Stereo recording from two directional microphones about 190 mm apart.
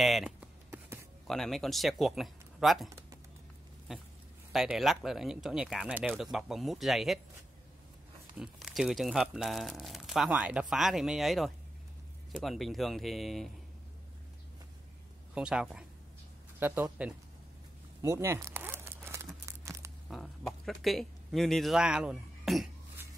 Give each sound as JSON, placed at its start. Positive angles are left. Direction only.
{"t": 0.0, "sound": "a sound", "side_deg": -5}
{"t": 1.2, "sound": "speech", "side_deg": 0}
{"t": 4.5, "sound": "speech", "side_deg": 0}
{"t": 8.4, "sound": "speech", "side_deg": 0}
{"t": 15.3, "sound": "speech", "side_deg": -5}
{"t": 18.0, "sound": "a sound", "side_deg": -15}
{"t": 20.1, "sound": "speech", "side_deg": 0}